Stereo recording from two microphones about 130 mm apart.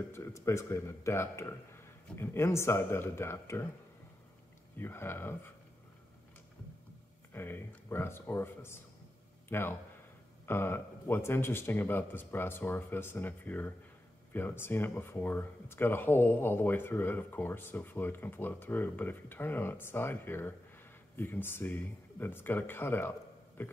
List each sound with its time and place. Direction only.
0.1 s a man's voice: 20° left (ahead or behind)
4.7 s speech: 15° left (ahead or behind)
7.3 s speech: 15° left (ahead or behind)